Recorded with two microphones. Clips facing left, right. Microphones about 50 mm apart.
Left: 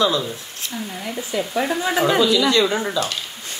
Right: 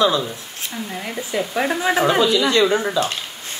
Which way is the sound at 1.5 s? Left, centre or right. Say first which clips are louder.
Right 2 dB; right.